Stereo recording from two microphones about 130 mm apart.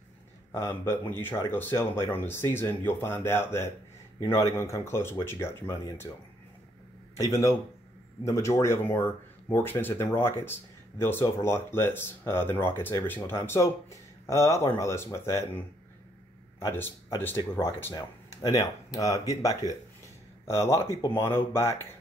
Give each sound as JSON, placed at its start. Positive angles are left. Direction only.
{"t": 0.5, "sound": "speech", "side_deg": 20}
{"t": 7.2, "sound": "speech", "side_deg": 25}
{"t": 16.5, "sound": "speech", "side_deg": 15}
{"t": 17.9, "sound": "speech", "side_deg": 30}